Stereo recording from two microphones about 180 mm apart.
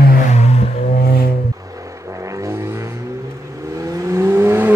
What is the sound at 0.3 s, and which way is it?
Vehicle, 35° left (ahead or behind).